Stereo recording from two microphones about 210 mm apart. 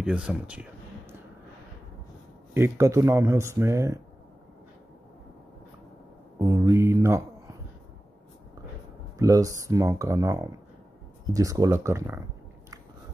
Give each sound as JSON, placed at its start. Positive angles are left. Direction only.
{"t": 0.0, "sound": "speech", "side_deg": -5}
{"t": 2.5, "sound": "speech", "side_deg": -15}
{"t": 6.3, "sound": "speech", "side_deg": -15}
{"t": 9.2, "sound": "speech", "side_deg": -15}